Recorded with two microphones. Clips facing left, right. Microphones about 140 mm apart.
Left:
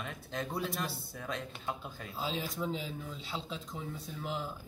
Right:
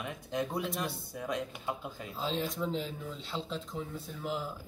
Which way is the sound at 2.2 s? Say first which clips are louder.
Right 3 dB; centre (ahead or behind).